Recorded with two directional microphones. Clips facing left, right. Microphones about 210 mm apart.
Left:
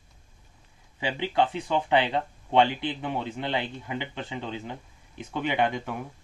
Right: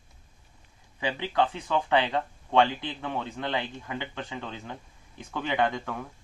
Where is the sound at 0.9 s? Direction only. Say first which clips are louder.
Left 1 dB; 25° left (ahead or behind).